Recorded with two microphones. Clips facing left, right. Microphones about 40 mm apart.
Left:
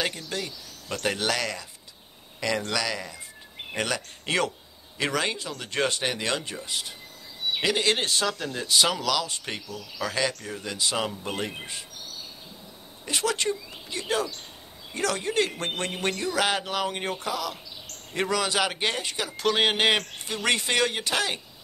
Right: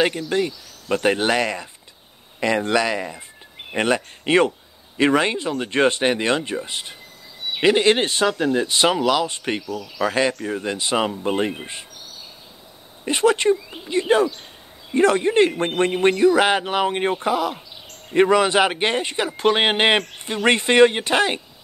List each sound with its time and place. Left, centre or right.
0.3 s speech: right
9.6 s speech: centre
9.9 s speech: right
13.0 s speech: right
20.0 s speech: centre
20.4 s speech: right